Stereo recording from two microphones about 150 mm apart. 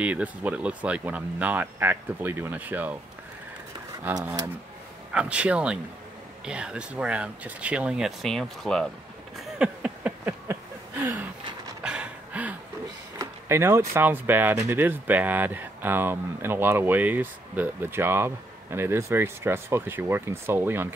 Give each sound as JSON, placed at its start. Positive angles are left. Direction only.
{"t": 0.0, "sound": "speech", "side_deg": -10}
{"t": 4.1, "sound": "speech", "side_deg": -20}
{"t": 5.1, "sound": "speech", "side_deg": -10}
{"t": 9.4, "sound": "a sound", "side_deg": -10}
{"t": 13.2, "sound": "speech", "side_deg": -15}